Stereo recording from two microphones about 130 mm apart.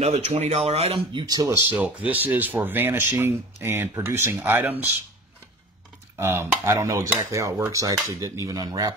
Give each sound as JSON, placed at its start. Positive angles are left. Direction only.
{"t": 0.0, "sound": "speech", "side_deg": -60}
{"t": 1.7, "sound": "speech", "side_deg": -15}
{"t": 6.1, "sound": "speech", "side_deg": -20}